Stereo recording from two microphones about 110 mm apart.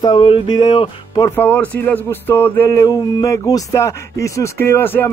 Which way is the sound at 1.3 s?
15° left (ahead or behind).